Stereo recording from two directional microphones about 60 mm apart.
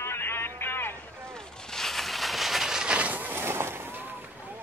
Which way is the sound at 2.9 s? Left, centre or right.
Right.